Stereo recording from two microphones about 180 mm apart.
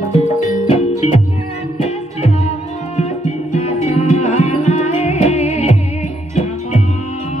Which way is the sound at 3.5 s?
35° left (ahead or behind).